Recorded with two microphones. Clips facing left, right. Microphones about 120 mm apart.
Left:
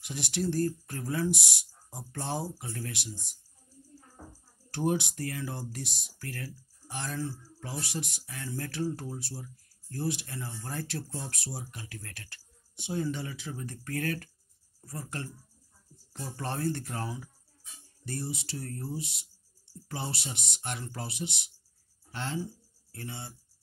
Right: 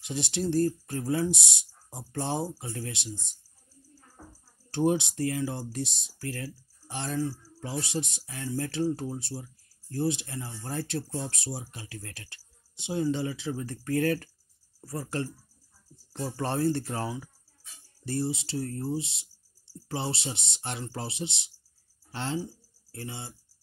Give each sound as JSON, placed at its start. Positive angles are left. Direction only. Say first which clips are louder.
{"t": 0.0, "sound": "speech", "louder": "right 2 dB", "side_deg": -25}
{"t": 4.2, "sound": "a sound", "louder": "even", "side_deg": 15}
{"t": 4.6, "sound": "speech", "louder": "right 4 dB", "side_deg": -25}